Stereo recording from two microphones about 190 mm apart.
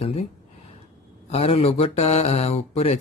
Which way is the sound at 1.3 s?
30° left (ahead or behind).